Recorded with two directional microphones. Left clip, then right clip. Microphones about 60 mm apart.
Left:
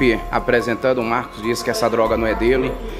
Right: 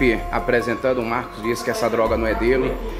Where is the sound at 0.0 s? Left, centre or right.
Left.